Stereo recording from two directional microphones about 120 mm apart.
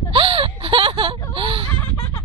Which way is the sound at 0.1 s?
50° right (ahead or behind).